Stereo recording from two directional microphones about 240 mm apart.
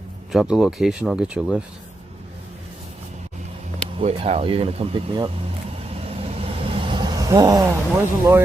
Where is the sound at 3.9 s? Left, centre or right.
Right.